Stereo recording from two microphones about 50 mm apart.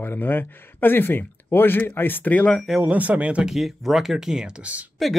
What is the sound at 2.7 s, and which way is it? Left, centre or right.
Speech, centre.